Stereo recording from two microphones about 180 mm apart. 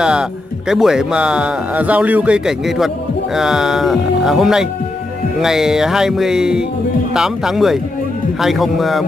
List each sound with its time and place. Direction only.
0.0 s speech: 5° right (ahead or behind)